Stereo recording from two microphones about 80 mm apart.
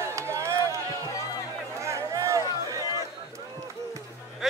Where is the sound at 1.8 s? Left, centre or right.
Right.